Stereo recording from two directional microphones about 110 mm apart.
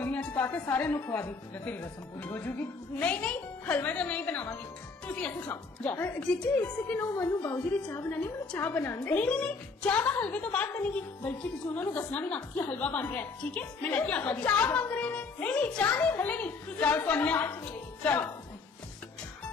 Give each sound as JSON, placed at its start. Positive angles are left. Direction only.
{"t": 0.0, "sound": "a woman's voice", "side_deg": 15}